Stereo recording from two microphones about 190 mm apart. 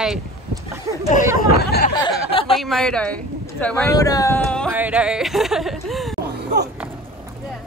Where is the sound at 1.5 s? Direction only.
55° left (ahead or behind).